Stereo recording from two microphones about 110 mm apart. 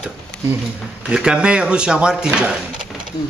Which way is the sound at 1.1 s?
10° right (ahead or behind).